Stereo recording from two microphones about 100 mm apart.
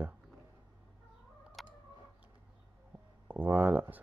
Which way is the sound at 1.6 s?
Centre (ahead or behind).